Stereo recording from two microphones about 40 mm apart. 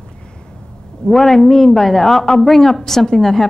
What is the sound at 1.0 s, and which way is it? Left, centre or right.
A woman's voice, centre.